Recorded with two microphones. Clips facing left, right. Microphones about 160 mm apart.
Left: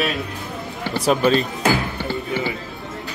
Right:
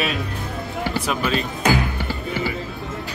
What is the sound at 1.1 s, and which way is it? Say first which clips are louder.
Speech: left 9 dB; 35° left (ahead or behind).